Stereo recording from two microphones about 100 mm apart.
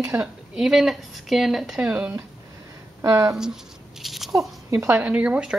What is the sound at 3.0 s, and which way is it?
Speech, 35° right (ahead or behind).